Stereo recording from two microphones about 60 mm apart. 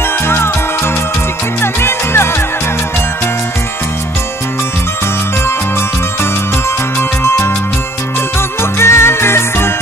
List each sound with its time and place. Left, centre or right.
1.6 s music: left
7.0 s music: left